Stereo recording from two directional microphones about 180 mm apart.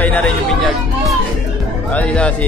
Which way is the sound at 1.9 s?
5° left (ahead or behind).